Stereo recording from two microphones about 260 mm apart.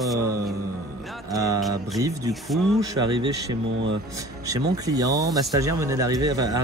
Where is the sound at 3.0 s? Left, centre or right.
Right.